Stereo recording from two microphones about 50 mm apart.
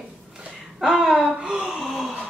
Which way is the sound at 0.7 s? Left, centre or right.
Centre.